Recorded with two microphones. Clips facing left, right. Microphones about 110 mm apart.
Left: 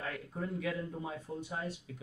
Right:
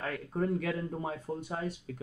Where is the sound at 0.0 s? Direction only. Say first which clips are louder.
Right 7 dB; 50° right (ahead or behind).